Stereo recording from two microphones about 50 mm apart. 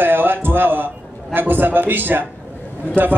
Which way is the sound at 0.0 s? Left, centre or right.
Right.